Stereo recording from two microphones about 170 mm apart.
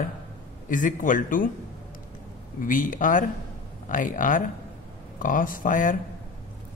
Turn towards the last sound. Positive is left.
turn(degrees=50)  # may be behind; listen again after turning